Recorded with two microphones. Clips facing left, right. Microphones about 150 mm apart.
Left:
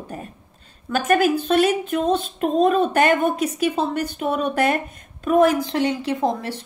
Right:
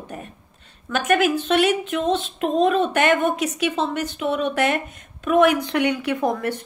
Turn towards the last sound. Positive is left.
turn(degrees=25)  # may be behind; listen again after turning